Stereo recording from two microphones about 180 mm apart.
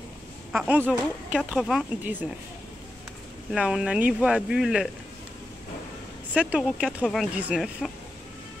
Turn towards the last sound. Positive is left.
turn(degrees=-5)  # may be behind; listen again after turning